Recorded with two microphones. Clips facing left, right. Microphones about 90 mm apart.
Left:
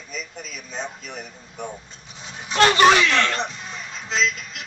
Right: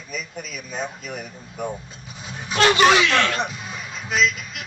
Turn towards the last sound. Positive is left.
turn(degrees=-5)  # may be behind; listen again after turning